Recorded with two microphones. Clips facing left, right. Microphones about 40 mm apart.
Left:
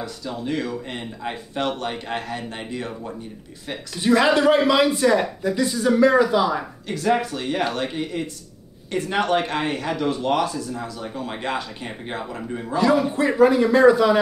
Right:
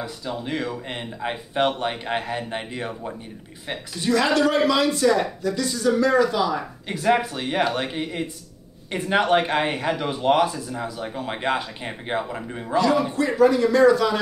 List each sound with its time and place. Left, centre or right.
0.0 s speech: centre
4.0 s speech: centre
6.9 s speech: centre
12.7 s speech: centre